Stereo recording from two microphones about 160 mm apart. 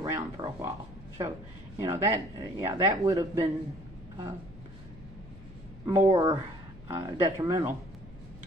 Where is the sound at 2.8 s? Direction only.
20° right (ahead or behind).